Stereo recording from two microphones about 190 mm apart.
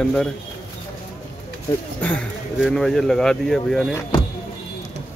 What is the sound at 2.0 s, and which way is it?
Speech, 5° left (ahead or behind).